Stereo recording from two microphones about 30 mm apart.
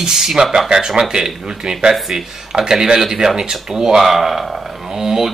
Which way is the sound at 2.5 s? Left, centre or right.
Right.